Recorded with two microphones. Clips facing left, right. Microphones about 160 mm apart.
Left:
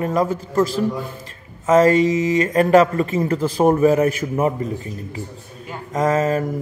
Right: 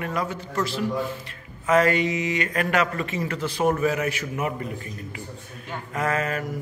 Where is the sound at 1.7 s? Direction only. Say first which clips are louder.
Left 7 dB; 40° left (ahead or behind).